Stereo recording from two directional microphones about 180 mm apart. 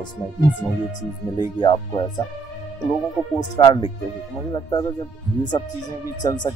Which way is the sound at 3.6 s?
25° left (ahead or behind).